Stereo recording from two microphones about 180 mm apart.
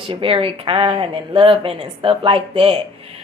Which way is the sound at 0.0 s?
30° right (ahead or behind).